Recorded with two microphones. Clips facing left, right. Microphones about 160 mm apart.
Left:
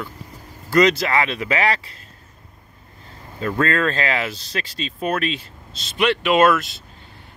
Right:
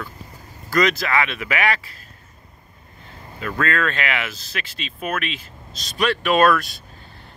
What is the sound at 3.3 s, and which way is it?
Speech, 30° left (ahead or behind).